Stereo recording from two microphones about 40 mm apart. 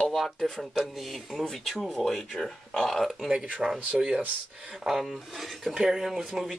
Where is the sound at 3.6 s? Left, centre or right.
Centre.